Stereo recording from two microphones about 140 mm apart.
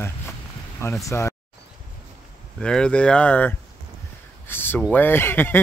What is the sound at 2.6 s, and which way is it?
Speech, 5° left (ahead or behind).